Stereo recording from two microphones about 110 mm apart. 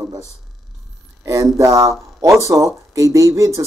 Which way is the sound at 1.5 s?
30° right (ahead or behind).